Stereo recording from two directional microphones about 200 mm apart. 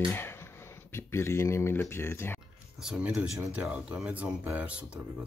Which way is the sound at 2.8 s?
5° right (ahead or behind).